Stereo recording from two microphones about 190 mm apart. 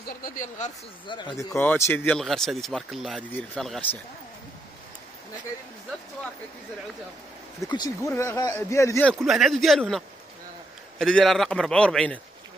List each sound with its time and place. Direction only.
0.0 s speech: 45° left (ahead or behind)
1.0 s a man's voice: 25° left (ahead or behind); by 3.8 s 5° left (ahead or behind)
7.6 s speech: 20° left (ahead or behind)
9.2 s a man's voice: centre (ahead or behind)